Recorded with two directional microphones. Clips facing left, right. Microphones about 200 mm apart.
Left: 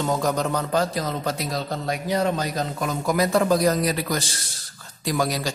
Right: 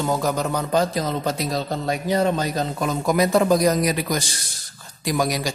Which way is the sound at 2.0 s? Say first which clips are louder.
Right 2 dB; 25° right (ahead or behind).